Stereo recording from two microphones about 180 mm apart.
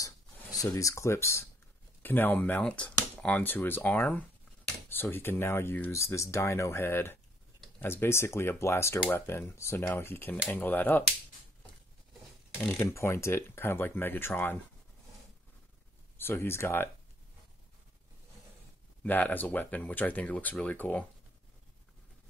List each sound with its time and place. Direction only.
0.0 s a sound: 20° left (ahead or behind)
0.7 s speech: 15° left (ahead or behind)
12.6 s speech: 15° left (ahead or behind)
16.2 s speech: 15° left (ahead or behind)
19.0 s speech: 10° left (ahead or behind)